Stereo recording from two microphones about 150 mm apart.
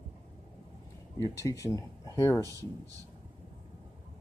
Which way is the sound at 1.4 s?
20° left (ahead or behind).